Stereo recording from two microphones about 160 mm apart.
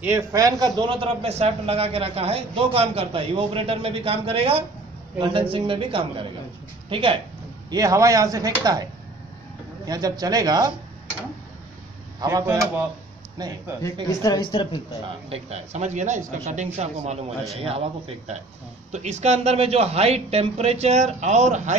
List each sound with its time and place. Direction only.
0.0 s a man's voice: 15° right (ahead or behind); by 7.2 s 35° right (ahead or behind)
7.7 s speech: 20° right (ahead or behind)
9.8 s speech: 25° right (ahead or behind)
12.2 s speech: 20° right (ahead or behind)
14.0 s speech: 20° left (ahead or behind)
15.0 s speech: 40° right (ahead or behind)